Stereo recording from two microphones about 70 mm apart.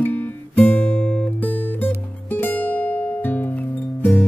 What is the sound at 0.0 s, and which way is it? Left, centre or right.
Guitar, left.